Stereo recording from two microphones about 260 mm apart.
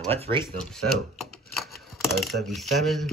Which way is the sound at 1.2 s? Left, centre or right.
Centre.